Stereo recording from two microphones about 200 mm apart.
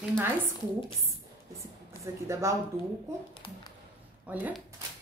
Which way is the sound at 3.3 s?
25° left (ahead or behind).